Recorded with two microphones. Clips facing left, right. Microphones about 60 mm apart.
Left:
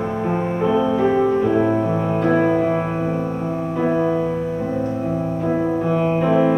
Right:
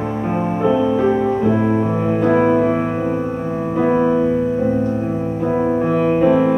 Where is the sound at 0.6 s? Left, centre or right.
Centre.